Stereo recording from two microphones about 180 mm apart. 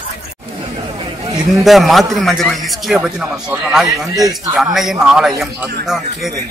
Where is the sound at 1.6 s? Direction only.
Centre (ahead or behind).